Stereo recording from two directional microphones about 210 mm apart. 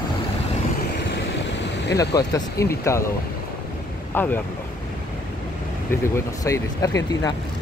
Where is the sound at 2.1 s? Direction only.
15° left (ahead or behind).